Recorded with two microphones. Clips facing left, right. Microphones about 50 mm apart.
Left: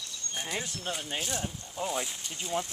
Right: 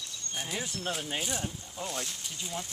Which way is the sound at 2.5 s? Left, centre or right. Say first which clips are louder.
Left 7 dB; left.